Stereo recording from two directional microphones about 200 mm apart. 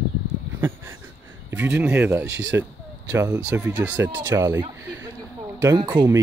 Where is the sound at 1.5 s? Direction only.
10° right (ahead or behind).